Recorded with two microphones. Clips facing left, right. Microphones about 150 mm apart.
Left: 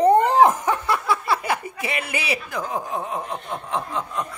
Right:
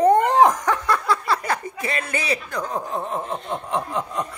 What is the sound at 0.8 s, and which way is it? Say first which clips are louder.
Speech: right 1 dB; 5° left (ahead or behind).